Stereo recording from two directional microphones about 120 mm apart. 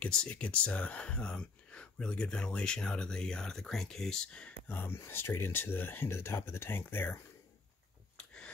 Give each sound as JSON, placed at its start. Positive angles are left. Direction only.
{"t": 0.0, "sound": "speech", "side_deg": 10}